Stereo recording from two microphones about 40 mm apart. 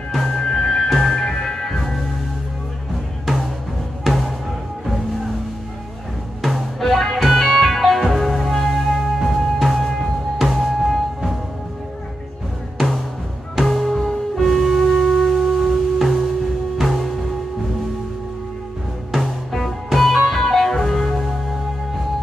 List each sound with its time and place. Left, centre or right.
0.1 s music: centre
0.8 s music: centre
1.1 s music: centre
4.0 s music: centre
6.4 s music: centre
13.6 s music: centre
13.9 s music: centre
14.4 s music: centre
19.1 s music: centre